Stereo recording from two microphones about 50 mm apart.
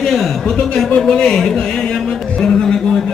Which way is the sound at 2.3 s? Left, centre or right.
Centre.